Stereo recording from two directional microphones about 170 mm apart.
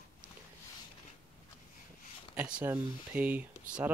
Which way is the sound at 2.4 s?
10° right (ahead or behind).